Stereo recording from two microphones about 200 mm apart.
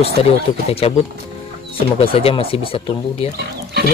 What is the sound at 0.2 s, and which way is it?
Speech, 30° left (ahead or behind).